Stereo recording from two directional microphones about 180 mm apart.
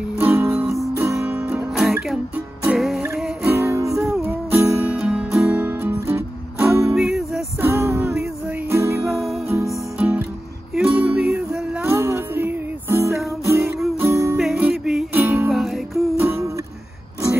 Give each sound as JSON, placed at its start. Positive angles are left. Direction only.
{"t": 0.2, "sound": "music", "side_deg": -10}
{"t": 3.9, "sound": "music", "side_deg": 0}
{"t": 4.3, "sound": "music", "side_deg": -10}
{"t": 7.0, "sound": "music", "side_deg": -5}
{"t": 7.7, "sound": "music", "side_deg": -15}
{"t": 9.1, "sound": "music", "side_deg": 0}
{"t": 14.3, "sound": "music", "side_deg": -5}
{"t": 15.5, "sound": "music", "side_deg": 0}
{"t": 16.2, "sound": "music", "side_deg": -15}